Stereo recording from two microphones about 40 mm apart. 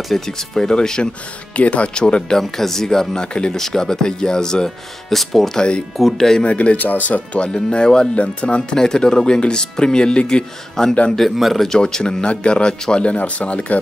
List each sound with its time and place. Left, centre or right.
0.1 s speech: centre
0.7 s speech: centre
1.6 s speech: left
2.5 s a man's voice: centre
5.6 s speech: centre
5.9 s speech: centre
6.4 s speech: left
7.3 s speech: left
8.1 s speech: left; by 11.0 s centre
11.1 s a man's voice: centre
11.7 s speech: centre
13.1 s speech: left